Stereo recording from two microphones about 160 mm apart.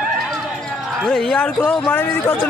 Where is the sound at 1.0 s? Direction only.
5° left (ahead or behind).